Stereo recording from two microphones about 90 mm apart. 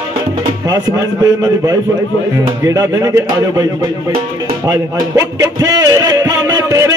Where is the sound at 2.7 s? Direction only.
35° right (ahead or behind).